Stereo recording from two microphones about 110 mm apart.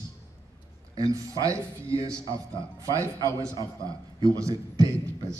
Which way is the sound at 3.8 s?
30° right (ahead or behind).